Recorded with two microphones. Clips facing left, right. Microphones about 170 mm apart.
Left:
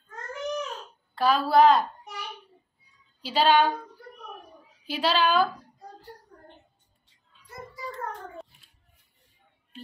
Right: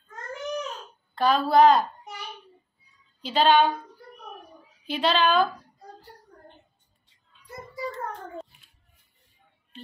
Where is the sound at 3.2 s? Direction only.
10° left (ahead or behind).